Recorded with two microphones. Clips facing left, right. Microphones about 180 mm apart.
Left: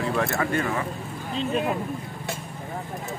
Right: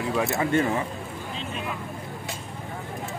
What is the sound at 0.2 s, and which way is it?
Speech, 20° right (ahead or behind).